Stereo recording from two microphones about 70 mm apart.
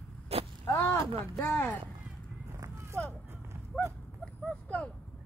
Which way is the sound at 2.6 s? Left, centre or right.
Right.